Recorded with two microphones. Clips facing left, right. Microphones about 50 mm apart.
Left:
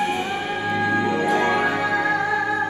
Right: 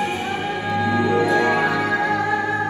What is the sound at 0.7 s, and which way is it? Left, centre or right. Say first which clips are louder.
Music: right 1 dB; left.